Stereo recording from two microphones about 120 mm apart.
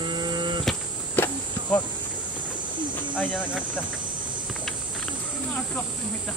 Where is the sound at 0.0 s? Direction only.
40° right (ahead or behind).